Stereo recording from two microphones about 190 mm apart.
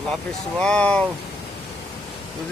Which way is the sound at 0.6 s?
5° left (ahead or behind).